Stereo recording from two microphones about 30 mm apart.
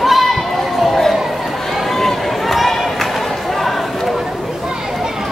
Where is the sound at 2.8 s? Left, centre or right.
Centre.